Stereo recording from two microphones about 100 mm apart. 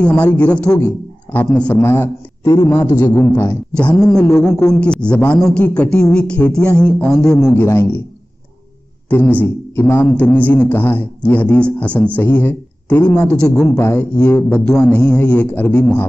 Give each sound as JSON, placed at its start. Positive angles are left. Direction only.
{"t": 0.0, "sound": "a man's voice", "side_deg": 15}
{"t": 2.4, "sound": "a man's voice", "side_deg": 40}
{"t": 3.0, "sound": "a man's voice", "side_deg": 20}
{"t": 4.0, "sound": "a man's voice", "side_deg": 10}
{"t": 7.5, "sound": "a man's voice", "side_deg": 25}
{"t": 9.1, "sound": "a man's voice", "side_deg": 15}